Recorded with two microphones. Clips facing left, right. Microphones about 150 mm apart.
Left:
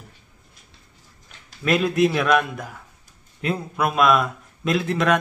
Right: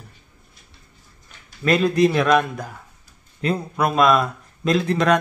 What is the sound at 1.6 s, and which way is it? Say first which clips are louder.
A man's voice: right 2 dB; 5° left (ahead or behind).